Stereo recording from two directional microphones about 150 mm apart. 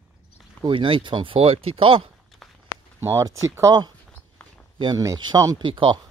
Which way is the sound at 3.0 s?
20° right (ahead or behind).